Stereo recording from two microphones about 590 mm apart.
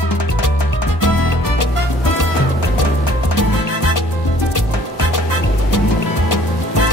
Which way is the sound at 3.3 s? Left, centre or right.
Left.